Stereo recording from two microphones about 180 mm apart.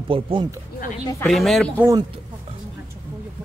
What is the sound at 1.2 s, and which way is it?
Speech, centre (ahead or behind).